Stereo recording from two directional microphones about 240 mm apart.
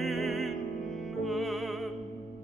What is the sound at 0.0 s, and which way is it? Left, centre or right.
Music, centre.